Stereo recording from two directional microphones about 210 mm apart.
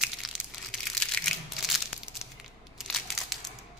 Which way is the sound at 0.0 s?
Centre (ahead or behind).